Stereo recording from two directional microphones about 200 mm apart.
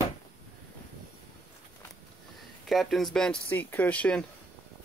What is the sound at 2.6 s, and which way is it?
Speech, centre (ahead or behind).